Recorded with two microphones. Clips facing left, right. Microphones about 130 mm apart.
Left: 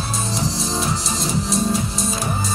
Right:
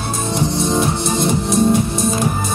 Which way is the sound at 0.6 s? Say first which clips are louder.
Right 7 dB; 55° right (ahead or behind).